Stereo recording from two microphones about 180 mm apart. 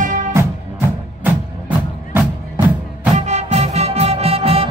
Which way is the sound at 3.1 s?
40° right (ahead or behind).